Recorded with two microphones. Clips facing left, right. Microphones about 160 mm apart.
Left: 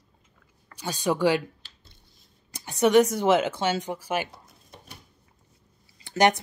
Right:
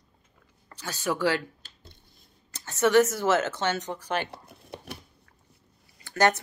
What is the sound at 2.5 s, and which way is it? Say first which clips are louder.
Speech: left 2 dB; 15° left (ahead or behind).